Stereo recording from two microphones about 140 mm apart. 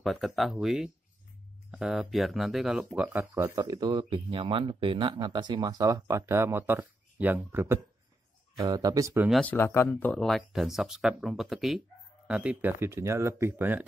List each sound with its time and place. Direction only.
0.0 s speech: centre (ahead or behind)
2.9 s speech: 15° right (ahead or behind)
4.0 s speech: 35° right (ahead or behind); by 7.8 s 15° right (ahead or behind)
8.5 s speech: 25° right (ahead or behind)
9.3 s speech: 10° left (ahead or behind); by 12.7 s 10° right (ahead or behind)
12.7 s speech: 20° right (ahead or behind)